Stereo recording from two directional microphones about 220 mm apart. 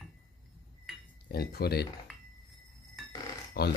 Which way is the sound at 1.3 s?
45° left (ahead or behind).